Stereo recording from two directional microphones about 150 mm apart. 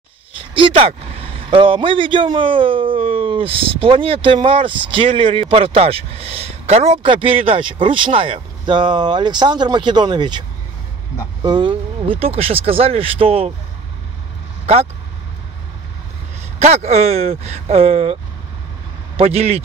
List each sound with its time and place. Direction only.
0.4 s a sound: 35° right (ahead or behind)
1.5 s a man's voice: 35° right (ahead or behind)
11.4 s a man's voice: 30° right (ahead or behind)
16.5 s speech: 45° right (ahead or behind)
19.1 s speech: 45° right (ahead or behind)